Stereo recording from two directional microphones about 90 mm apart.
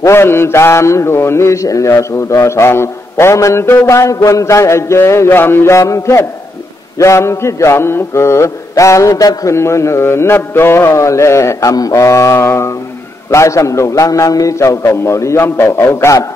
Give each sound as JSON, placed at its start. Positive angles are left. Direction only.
{"t": 0.0, "sound": "mantra", "side_deg": 30}